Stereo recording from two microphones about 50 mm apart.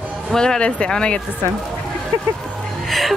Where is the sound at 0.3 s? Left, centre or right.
Centre.